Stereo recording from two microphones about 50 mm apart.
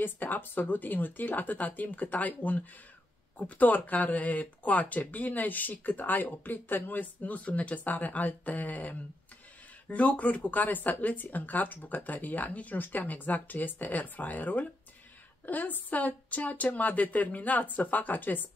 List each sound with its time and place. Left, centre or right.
0.0 s speech: left